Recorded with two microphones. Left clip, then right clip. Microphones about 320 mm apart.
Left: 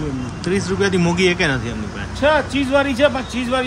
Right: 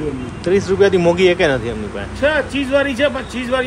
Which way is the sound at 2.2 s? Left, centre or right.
Centre.